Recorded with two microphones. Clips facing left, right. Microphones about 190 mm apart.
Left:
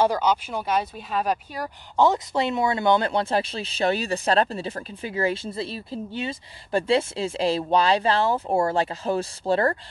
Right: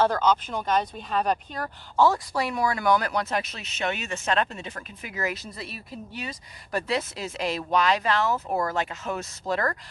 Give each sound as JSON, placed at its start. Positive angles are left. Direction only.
{"t": 0.0, "sound": "speech", "side_deg": 10}